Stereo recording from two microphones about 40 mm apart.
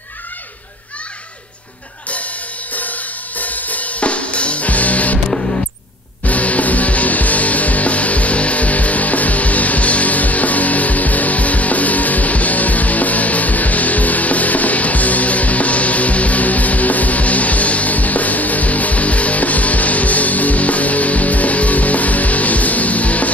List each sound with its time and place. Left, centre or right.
2.7 s music: left
6.2 s music: left